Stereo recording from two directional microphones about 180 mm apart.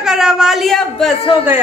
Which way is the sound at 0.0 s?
5° right (ahead or behind).